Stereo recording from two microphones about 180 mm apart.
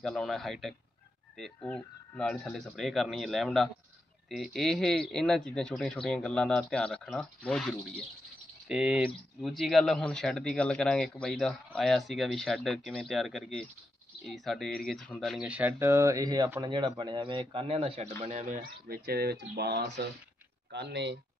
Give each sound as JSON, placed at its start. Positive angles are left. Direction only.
{"t": 0.0, "sound": "a man's voice", "side_deg": 5}